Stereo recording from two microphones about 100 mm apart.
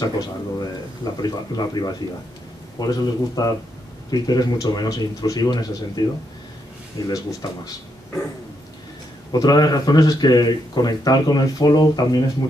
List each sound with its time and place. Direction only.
0.0 s speech: 40° left (ahead or behind)
7.1 s speech: 35° left (ahead or behind)
9.3 s speech: 40° left (ahead or behind)